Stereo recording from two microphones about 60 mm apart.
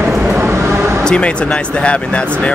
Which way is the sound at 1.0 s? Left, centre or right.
Centre.